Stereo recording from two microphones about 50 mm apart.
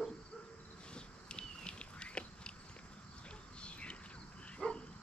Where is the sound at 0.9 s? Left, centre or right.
Centre.